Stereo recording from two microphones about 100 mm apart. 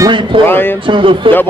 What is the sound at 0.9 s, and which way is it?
Speech, 60° right (ahead or behind).